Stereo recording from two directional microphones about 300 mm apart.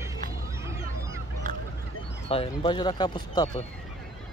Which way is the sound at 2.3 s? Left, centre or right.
Centre.